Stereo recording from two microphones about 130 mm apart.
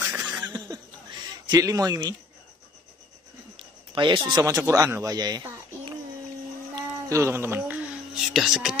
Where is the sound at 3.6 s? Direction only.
40° right (ahead or behind).